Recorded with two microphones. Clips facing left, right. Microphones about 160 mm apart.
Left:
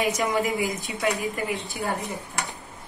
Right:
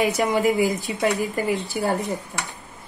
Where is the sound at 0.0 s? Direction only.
35° right (ahead or behind).